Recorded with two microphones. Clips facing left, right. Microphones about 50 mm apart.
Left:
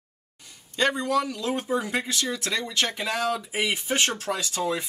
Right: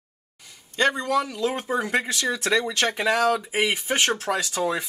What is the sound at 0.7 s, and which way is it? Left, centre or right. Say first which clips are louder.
Speech: right 2 dB; right.